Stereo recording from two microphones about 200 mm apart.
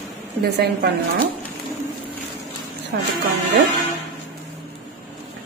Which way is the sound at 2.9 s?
50° right (ahead or behind).